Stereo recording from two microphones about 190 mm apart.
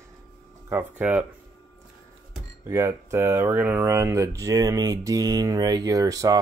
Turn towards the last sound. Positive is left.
turn(degrees=-20)  # may be behind; listen again after turning